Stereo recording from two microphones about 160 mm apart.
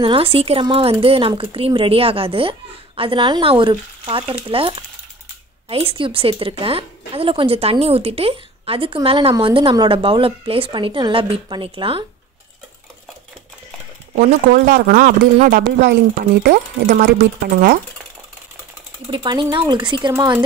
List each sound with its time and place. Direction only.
0.0 s a woman's voice: 35° right (ahead or behind)
14.1 s speech: 60° right (ahead or behind); by 17.1 s 80° right
19.0 s speech: 30° right (ahead or behind)